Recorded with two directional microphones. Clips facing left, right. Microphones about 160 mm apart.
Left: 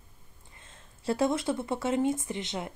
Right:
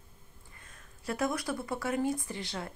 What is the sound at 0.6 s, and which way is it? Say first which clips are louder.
Speech: left 2 dB; 25° left (ahead or behind).